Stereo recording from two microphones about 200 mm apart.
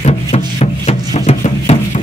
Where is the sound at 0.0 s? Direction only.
30° left (ahead or behind).